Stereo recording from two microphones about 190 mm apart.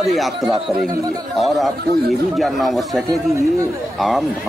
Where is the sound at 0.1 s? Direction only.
Centre (ahead or behind).